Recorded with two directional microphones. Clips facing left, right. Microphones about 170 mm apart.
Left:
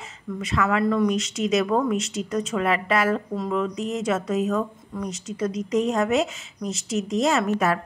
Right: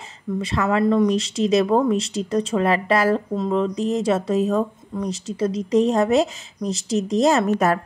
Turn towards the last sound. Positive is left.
turn(degrees=-40)  # may be behind; listen again after turning